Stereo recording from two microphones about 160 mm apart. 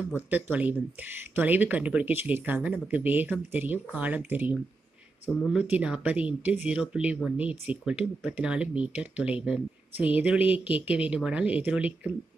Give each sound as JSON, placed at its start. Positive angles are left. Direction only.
{"t": 0.3, "sound": "speech", "side_deg": -10}